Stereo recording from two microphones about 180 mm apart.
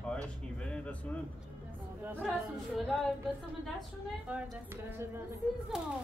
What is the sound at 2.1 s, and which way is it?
Speech, 10° right (ahead or behind).